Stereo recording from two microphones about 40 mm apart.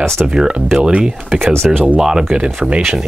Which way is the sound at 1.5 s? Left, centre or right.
Centre.